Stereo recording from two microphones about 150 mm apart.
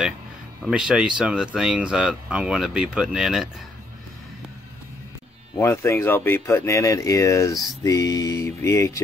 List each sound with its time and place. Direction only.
0.7 s speech: 5° right (ahead or behind)
5.6 s speech: 15° left (ahead or behind)